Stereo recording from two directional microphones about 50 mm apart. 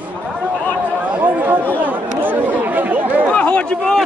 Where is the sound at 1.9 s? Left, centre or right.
Right.